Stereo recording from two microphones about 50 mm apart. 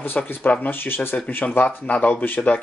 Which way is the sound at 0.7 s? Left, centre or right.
Left.